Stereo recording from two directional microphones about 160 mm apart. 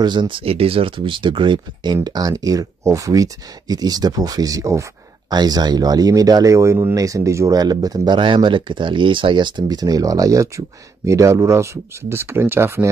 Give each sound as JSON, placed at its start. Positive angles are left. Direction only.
{"t": 0.0, "sound": "speech", "side_deg": -30}